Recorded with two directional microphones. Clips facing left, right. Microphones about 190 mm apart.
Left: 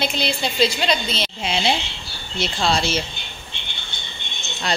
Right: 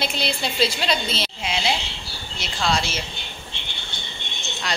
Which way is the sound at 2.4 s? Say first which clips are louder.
Left 3 dB; 30° left (ahead or behind).